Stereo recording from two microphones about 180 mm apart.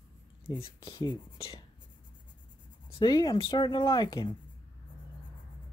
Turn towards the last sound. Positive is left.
turn(degrees=25)  # may be behind; listen again after turning